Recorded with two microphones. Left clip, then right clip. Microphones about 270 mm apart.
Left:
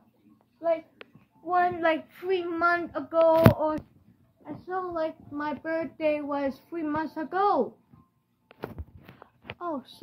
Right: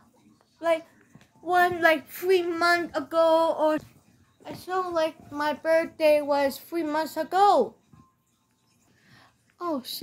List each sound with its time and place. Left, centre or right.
1.4 s speech: right